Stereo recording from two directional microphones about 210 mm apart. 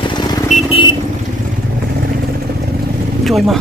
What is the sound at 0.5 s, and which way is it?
Vehicle, 25° left (ahead or behind).